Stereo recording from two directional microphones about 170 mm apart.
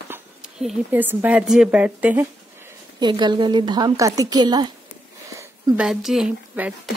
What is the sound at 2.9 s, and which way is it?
A woman's voice, 25° right (ahead or behind).